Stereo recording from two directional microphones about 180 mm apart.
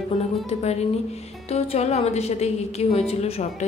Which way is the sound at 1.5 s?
35° left (ahead or behind).